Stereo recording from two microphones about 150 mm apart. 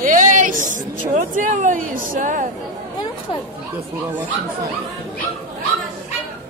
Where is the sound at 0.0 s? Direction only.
65° right (ahead or behind).